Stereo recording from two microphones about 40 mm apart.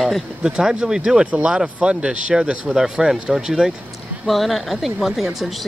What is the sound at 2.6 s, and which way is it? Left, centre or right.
Speech, centre.